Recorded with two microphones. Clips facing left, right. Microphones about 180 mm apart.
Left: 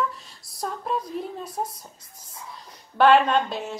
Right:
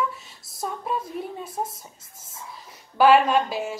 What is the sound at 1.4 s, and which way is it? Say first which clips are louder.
Speech: even; 25° right (ahead or behind).